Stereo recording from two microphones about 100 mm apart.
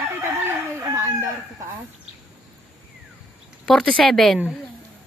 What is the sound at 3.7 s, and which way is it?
Speech, 5° left (ahead or behind).